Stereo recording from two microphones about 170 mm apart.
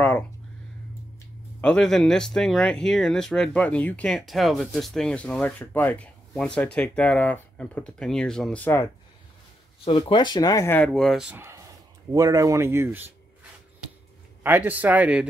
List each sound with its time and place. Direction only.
1.6 s speech: 5° left (ahead or behind)
9.8 s speech: 30° left (ahead or behind)
10.9 s speech: centre (ahead or behind)
14.4 s speech: 10° right (ahead or behind)